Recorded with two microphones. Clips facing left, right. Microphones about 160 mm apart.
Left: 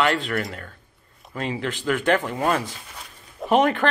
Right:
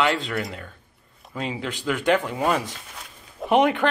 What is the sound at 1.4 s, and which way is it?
Speech, 15° right (ahead or behind).